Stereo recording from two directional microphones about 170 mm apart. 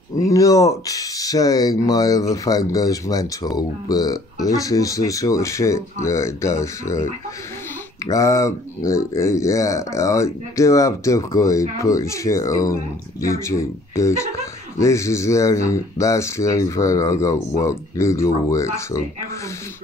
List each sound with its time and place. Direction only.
0.2 s speech: 20° left (ahead or behind)
8.1 s speech: 20° left (ahead or behind)